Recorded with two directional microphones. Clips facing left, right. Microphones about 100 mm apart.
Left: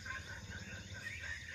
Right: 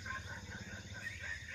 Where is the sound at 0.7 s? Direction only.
10° right (ahead or behind).